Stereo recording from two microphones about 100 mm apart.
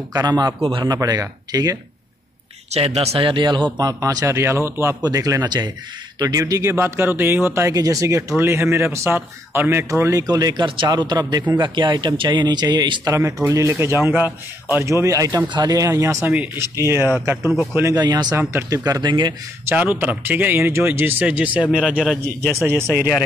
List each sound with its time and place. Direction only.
0.1 s speech: 40° right (ahead or behind)
0.6 s speech: 65° right (ahead or behind)
0.8 s speech: 40° right (ahead or behind)
2.7 s speech: 90° right; by 3.6 s 55° right (ahead or behind)
3.7 s speech: 40° right (ahead or behind)
10.6 s speech: 50° right (ahead or behind)
13.0 s speech: 30° right (ahead or behind)
14.9 s speech: 30° right (ahead or behind)
15.4 s speech: 45° right (ahead or behind); by 17.4 s 25° right (ahead or behind)
17.9 s speech: 45° right (ahead or behind)
18.5 s speech: 25° right (ahead or behind)
18.9 s speech: 45° right (ahead or behind)
19.6 s speech: 15° right (ahead or behind)
22.2 s speech: 25° right (ahead or behind)